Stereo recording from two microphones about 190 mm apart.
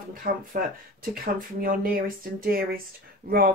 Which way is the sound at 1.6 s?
50° right (ahead or behind).